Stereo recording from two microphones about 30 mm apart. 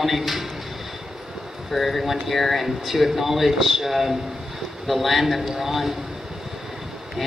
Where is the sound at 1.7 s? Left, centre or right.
Centre.